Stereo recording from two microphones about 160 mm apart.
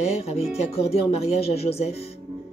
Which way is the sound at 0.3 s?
40° left (ahead or behind).